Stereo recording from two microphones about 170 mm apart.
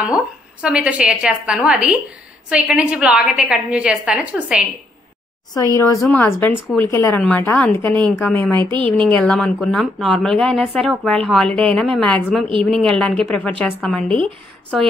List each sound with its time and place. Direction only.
0.0 s a woman's voice: 5° right (ahead or behind)
5.8 s a woman's voice: 15° left (ahead or behind)
8.5 s a woman's voice: 25° right (ahead or behind)
9.1 s speech: 5° left (ahead or behind)